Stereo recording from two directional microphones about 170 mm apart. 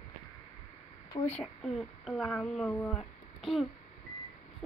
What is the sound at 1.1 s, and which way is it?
Speech, 15° left (ahead or behind).